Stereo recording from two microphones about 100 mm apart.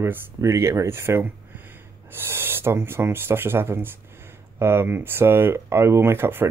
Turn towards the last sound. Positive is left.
turn(degrees=-25)  # may be behind; listen again after turning